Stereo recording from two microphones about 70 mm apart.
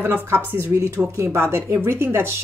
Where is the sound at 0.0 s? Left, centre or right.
Right.